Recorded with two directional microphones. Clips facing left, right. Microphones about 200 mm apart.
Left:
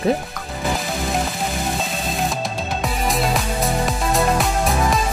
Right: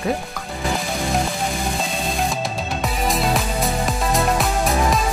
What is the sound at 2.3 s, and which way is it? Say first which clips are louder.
Music: even; centre (ahead or behind).